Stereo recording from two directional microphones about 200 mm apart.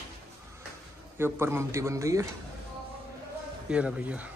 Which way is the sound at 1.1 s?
10° right (ahead or behind).